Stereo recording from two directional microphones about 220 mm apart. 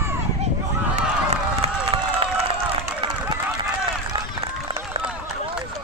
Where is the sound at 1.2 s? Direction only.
25° right (ahead or behind).